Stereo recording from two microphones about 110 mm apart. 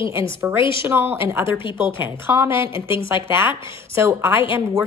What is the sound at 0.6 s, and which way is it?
Speech, 50° left (ahead or behind).